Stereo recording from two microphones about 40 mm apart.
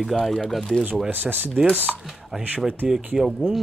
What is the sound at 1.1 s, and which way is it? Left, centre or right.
Speech, right.